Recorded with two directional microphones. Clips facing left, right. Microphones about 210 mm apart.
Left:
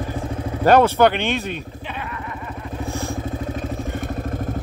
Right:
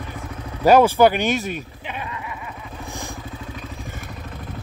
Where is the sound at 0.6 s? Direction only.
10° right (ahead or behind).